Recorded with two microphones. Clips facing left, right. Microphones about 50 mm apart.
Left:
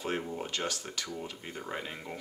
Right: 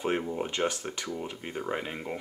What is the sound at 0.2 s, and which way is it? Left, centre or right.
Speech, centre.